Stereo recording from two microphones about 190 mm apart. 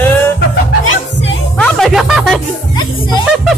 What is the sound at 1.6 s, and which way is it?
Music, 5° left (ahead or behind).